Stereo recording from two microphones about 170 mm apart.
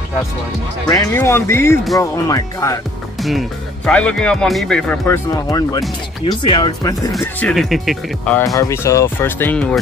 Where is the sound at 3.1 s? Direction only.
Centre (ahead or behind).